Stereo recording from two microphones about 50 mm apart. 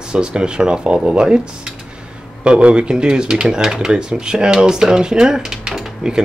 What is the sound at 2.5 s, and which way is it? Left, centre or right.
Speech, right.